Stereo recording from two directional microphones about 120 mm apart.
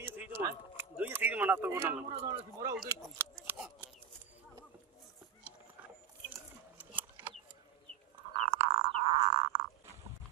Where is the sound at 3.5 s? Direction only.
15° right (ahead or behind).